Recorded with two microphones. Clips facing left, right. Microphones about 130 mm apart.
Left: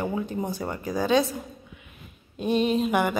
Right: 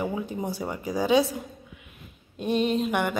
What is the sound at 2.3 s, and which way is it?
Speech, centre (ahead or behind).